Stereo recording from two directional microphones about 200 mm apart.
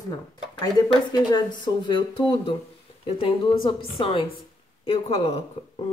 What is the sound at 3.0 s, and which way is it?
Speech, 25° left (ahead or behind).